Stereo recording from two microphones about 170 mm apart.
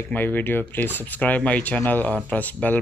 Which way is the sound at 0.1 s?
10° left (ahead or behind).